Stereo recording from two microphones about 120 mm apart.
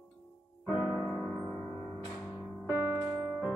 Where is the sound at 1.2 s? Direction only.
10° left (ahead or behind).